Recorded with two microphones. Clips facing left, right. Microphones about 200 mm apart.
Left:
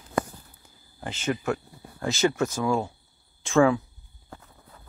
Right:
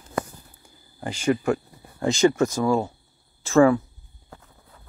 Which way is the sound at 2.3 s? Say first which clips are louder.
Right 4 dB; 10° right (ahead or behind).